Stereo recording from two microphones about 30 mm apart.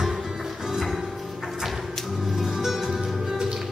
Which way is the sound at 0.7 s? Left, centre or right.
Centre.